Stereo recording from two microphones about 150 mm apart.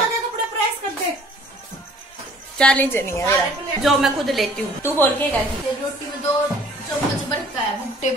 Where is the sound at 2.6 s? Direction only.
10° left (ahead or behind).